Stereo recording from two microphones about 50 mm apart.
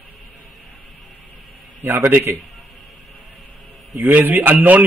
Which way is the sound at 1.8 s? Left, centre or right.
Right.